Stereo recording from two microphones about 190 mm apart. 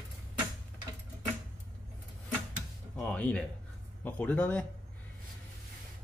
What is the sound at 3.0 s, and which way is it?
Music, 5° left (ahead or behind).